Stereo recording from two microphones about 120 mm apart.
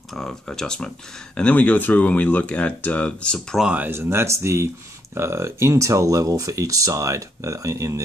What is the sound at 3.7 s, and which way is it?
Speech, 15° right (ahead or behind).